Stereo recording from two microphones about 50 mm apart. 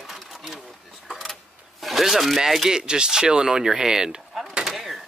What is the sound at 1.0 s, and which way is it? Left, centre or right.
Speech, centre.